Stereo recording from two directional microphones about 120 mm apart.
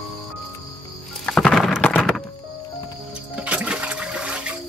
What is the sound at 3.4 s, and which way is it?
Toilet flush, 10° right (ahead or behind).